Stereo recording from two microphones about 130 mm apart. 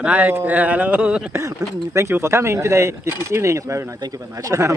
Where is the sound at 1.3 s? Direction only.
20° right (ahead or behind).